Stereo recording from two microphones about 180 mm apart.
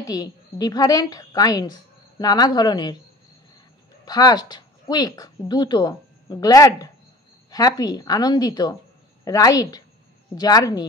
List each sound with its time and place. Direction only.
0.0 s a woman's voice: 20° left (ahead or behind)
4.0 s a woman's voice: 20° left (ahead or behind)